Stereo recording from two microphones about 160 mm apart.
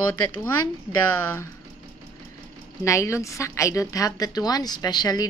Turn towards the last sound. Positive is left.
turn(degrees=25)  # may be behind; listen again after turning